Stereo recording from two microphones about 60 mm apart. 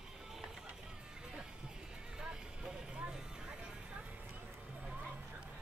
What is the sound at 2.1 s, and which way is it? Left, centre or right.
Vehicle, centre.